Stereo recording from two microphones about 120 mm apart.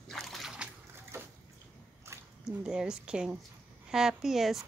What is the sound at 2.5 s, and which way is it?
A woman's voice, 5° right (ahead or behind).